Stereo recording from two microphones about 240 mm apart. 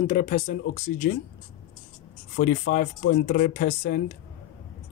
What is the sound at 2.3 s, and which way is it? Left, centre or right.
Speech, left.